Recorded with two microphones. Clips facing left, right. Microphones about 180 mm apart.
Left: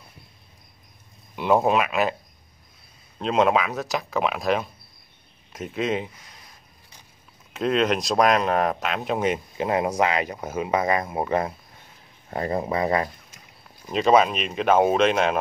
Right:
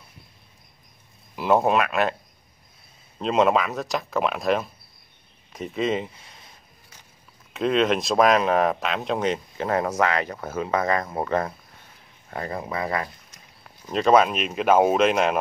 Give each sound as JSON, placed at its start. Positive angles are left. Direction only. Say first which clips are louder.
{"t": 1.3, "sound": "speech", "louder": "even", "side_deg": 0}
{"t": 3.2, "sound": "speech", "louder": "even", "side_deg": 0}
{"t": 6.1, "sound": "a sound", "louder": "even", "side_deg": -30}
{"t": 7.5, "sound": "speech", "louder": "right 1 dB", "side_deg": 0}
{"t": 12.3, "sound": "speech", "louder": "left 5 dB", "side_deg": 25}
{"t": 13.8, "sound": "speech", "louder": "even", "side_deg": 5}